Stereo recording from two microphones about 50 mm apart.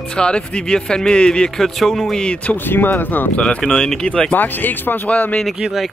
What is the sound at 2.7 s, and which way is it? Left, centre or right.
Speech, left.